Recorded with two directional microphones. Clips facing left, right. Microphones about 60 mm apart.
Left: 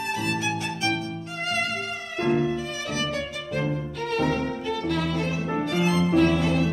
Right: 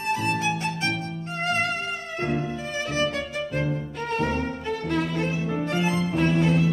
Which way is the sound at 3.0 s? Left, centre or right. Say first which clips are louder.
Right 4 dB; right.